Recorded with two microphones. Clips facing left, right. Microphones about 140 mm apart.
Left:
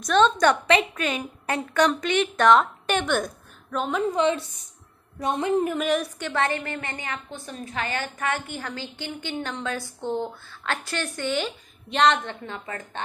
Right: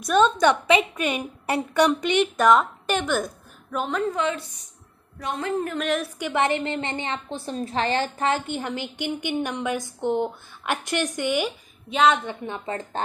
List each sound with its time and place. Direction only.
0.0 s a woman's voice: 5° right (ahead or behind)
4.1 s a woman's voice: 20° left (ahead or behind); by 6.0 s 5° left (ahead or behind)
6.1 s a woman's voice: 15° right (ahead or behind)
12.4 s speech: 25° right (ahead or behind)